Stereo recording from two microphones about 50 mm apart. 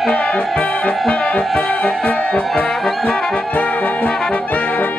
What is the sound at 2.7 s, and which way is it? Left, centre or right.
Brass instrument, centre.